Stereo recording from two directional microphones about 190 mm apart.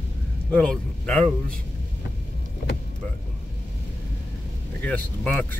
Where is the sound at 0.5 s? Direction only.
5° left (ahead or behind).